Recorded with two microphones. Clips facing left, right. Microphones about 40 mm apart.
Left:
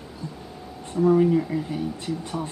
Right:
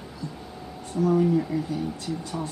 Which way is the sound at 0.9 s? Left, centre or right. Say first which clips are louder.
Left 3 dB; left.